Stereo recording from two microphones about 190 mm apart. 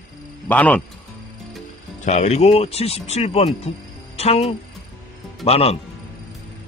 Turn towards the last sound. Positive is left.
turn(degrees=30)  # may be behind; listen again after turning